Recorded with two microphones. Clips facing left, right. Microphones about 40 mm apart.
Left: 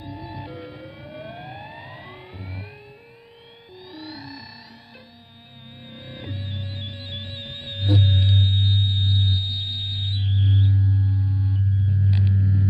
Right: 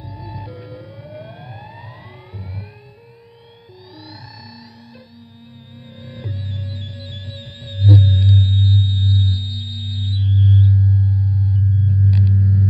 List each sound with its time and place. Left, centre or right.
0.2 s siren: left
3.9 s music: left
5.9 s music: left
11.8 s rumble: centre